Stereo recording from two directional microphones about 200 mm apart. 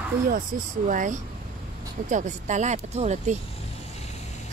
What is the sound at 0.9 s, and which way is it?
Speech, 40° right (ahead or behind).